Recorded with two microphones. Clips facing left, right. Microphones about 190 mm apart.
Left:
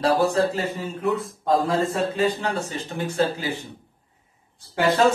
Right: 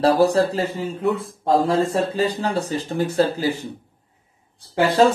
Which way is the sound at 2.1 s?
35° right (ahead or behind).